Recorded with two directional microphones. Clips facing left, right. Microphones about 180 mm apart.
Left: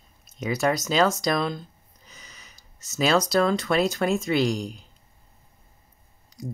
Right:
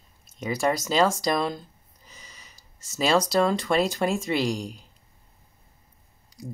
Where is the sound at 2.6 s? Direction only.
30° right (ahead or behind).